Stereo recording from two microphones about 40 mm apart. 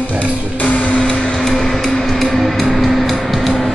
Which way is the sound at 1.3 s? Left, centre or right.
Centre.